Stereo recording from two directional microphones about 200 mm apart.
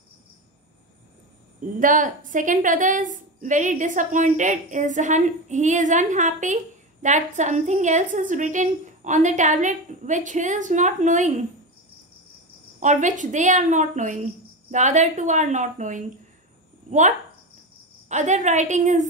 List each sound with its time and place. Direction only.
1.8 s a woman's voice: 40° right (ahead or behind)
12.8 s a woman's voice: 40° right (ahead or behind)
18.0 s a woman's voice: 35° right (ahead or behind)